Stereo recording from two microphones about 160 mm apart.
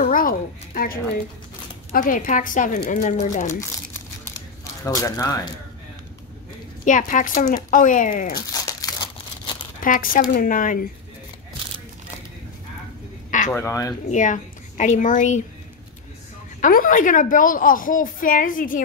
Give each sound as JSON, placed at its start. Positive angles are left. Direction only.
{"t": 0.0, "sound": "a woman's voice", "side_deg": 60}
{"t": 4.8, "sound": "speech", "side_deg": 20}
{"t": 6.8, "sound": "a woman's voice", "side_deg": 55}
{"t": 8.4, "sound": "crumpling", "side_deg": 20}
{"t": 9.8, "sound": "a woman's voice", "side_deg": 60}
{"t": 13.6, "sound": "speech", "side_deg": 20}
{"t": 14.1, "sound": "a woman's voice", "side_deg": 50}
{"t": 16.6, "sound": "a woman's voice", "side_deg": 60}